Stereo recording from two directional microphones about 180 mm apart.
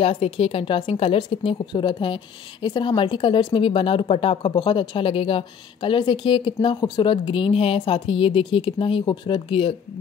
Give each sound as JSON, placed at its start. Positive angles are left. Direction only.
{"t": 0.0, "sound": "speech", "side_deg": 35}